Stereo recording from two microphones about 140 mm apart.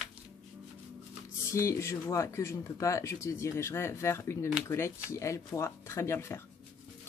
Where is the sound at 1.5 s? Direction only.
20° left (ahead or behind).